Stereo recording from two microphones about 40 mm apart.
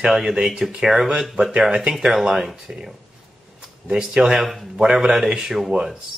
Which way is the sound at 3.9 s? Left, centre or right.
Right.